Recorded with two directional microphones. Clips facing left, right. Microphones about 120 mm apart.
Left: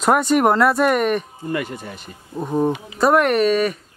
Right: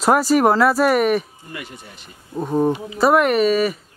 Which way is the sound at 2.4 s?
Centre (ahead or behind).